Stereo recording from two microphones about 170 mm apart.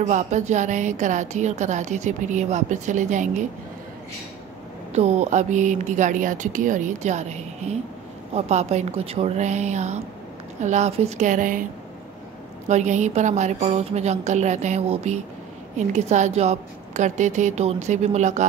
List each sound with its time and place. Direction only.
0.0 s a woman's voice: 45° right (ahead or behind)
4.9 s a woman's voice: 40° right (ahead or behind)
12.6 s a woman's voice: 45° right (ahead or behind)